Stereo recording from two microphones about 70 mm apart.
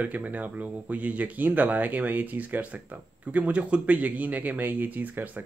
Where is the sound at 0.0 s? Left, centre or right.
Right.